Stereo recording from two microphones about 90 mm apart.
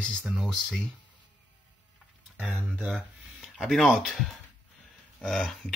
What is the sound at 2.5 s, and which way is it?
Speech, 15° right (ahead or behind).